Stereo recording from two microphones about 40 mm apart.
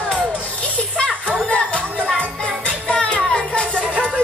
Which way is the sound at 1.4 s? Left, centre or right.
Left.